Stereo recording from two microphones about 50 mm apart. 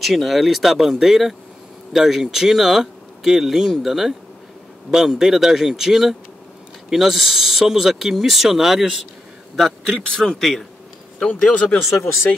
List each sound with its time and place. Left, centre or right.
0.0 s speech: centre
9.9 s speech: centre
10.4 s speech: centre
11.5 s speech: left